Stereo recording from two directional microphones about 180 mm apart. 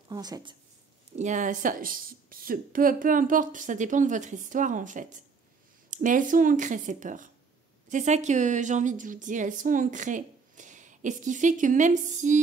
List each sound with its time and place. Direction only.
0.1 s speech: 20° right (ahead or behind)
1.1 s a woman's voice: 40° right (ahead or behind)